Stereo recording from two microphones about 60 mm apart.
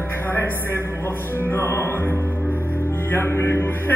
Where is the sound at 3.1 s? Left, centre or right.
Left.